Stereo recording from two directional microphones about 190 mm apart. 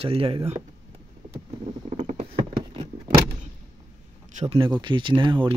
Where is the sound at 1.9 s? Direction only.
35° right (ahead or behind).